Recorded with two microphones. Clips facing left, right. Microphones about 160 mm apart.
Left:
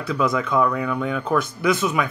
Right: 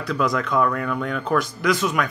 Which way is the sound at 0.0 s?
Centre (ahead or behind).